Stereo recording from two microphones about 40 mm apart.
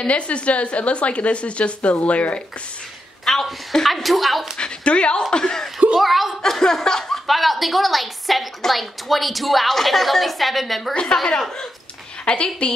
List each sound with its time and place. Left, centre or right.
0.0 s a woman's voice: left
3.3 s a woman's voice: centre
4.6 s speech: left
5.3 s laughter: centre
5.9 s a woman's voice: centre
6.6 s laughter: centre
7.2 s a woman's voice: centre
11.1 s speech: left